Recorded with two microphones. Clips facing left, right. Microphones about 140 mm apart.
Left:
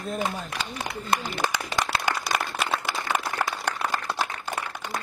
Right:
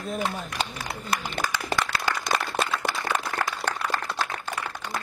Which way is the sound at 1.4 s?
25° left (ahead or behind).